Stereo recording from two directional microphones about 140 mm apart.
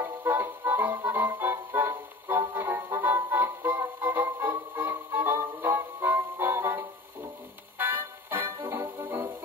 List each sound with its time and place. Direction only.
0.0 s music: 15° right (ahead or behind)